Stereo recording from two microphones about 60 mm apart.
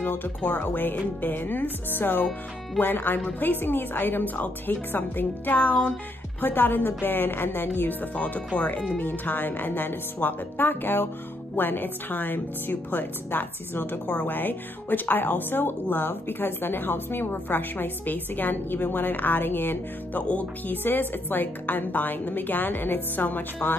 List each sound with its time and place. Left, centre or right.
0.0 s a woman's voice: left
8.1 s a woman's voice: left
20.2 s speech: left
20.7 s a woman's voice: left